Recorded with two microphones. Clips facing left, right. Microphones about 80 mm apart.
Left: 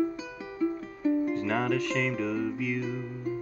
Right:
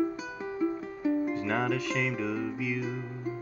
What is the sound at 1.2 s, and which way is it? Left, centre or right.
Music, centre.